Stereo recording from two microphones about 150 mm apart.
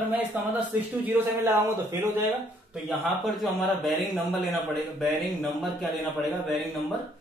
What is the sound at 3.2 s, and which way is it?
Speech, centre (ahead or behind).